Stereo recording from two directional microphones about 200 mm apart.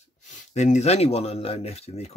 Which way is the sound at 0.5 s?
35° left (ahead or behind).